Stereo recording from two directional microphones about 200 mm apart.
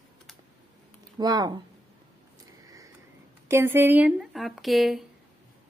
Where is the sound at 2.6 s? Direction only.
15° right (ahead or behind).